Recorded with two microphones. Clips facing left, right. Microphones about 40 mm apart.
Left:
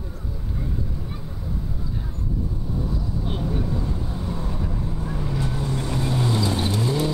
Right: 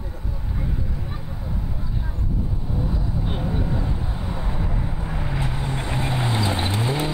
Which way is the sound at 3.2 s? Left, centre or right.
Centre.